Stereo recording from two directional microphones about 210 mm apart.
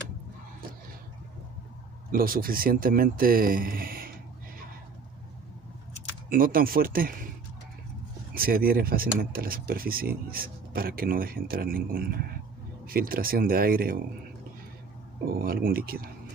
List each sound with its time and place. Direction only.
2.0 s speech: 45° right (ahead or behind)
6.2 s speech: 40° right (ahead or behind)
8.4 s speech: 45° right (ahead or behind)
15.2 s speech: 45° right (ahead or behind)